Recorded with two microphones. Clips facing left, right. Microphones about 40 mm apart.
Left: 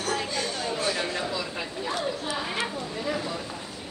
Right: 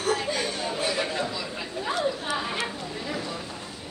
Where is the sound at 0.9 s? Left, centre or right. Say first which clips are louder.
Right 1 dB; centre.